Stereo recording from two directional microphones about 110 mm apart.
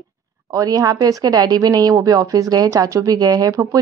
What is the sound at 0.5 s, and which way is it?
Speech, 35° right (ahead or behind).